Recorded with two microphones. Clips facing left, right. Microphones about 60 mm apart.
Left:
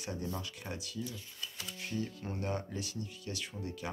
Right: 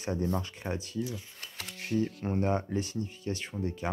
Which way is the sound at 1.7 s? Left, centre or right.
Right.